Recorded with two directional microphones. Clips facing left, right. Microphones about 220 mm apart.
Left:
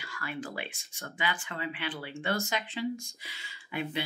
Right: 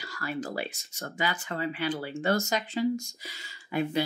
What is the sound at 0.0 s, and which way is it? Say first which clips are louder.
Speech: right 4 dB; 40° right (ahead or behind).